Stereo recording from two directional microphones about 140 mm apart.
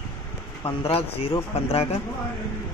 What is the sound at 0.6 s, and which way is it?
Speech, 45° left (ahead or behind).